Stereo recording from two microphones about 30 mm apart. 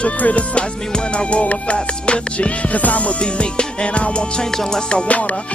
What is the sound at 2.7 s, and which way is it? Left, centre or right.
Music, left.